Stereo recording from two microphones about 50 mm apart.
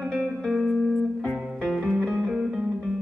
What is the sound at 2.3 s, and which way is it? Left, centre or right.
Music, centre.